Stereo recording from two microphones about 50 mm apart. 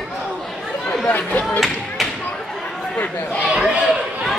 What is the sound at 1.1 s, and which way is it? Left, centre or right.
Chop, left.